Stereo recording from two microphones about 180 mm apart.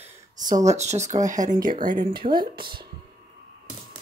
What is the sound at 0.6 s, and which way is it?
Speech, 40° right (ahead or behind).